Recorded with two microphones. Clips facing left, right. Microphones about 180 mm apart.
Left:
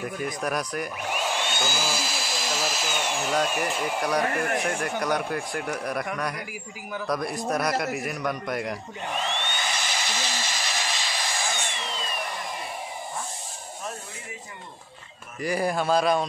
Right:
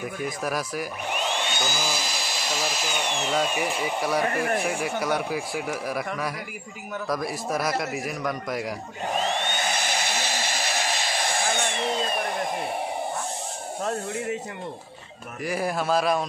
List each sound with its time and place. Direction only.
0.0 s speech: centre (ahead or behind)
9.1 s a sound: 40° right (ahead or behind)
13.8 s speech: 70° right (ahead or behind)
15.4 s speech: centre (ahead or behind)